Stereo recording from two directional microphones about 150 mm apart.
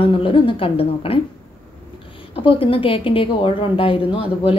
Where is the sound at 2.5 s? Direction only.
40° left (ahead or behind).